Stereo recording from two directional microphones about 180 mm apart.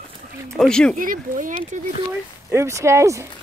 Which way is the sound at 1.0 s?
50° right (ahead or behind).